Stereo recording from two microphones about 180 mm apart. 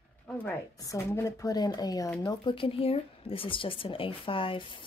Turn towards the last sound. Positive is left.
turn(degrees=30)  # may be behind; listen again after turning